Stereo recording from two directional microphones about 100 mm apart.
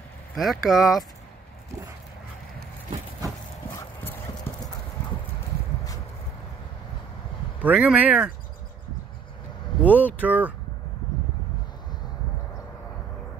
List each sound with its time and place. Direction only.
0.4 s speech: centre (ahead or behind)
4.5 s clip-clop: 25° left (ahead or behind)
7.6 s speech: 10° right (ahead or behind)
9.8 s speech: 20° left (ahead or behind)
10.2 s speech: 15° right (ahead or behind)